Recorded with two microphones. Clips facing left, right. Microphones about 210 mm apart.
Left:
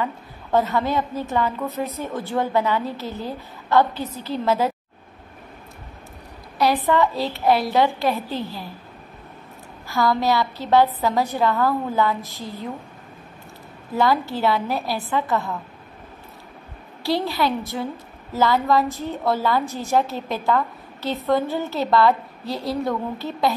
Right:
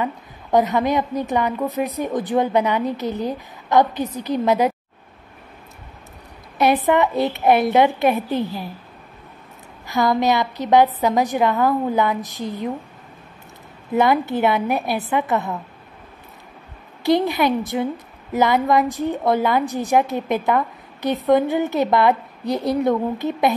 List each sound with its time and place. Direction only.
0.0 s a woman's voice: 15° right (ahead or behind)
6.9 s a woman's voice: 20° right (ahead or behind)
9.8 s a woman's voice: 20° right (ahead or behind)
13.9 s a woman's voice: 20° right (ahead or behind)
17.0 s a woman's voice: 20° right (ahead or behind)